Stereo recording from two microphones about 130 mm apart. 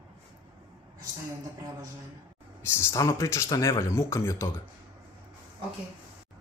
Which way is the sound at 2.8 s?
25° left (ahead or behind).